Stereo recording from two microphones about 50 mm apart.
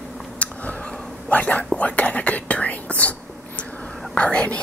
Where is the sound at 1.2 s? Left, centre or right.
Left.